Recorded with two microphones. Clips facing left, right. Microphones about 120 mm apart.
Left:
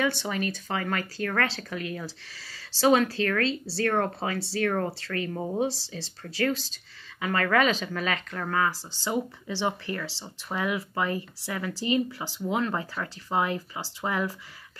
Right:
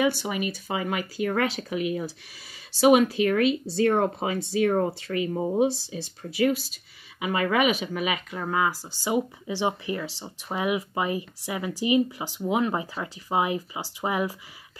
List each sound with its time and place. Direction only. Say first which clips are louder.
0.0 s speech: right 3 dB; 10° right (ahead or behind)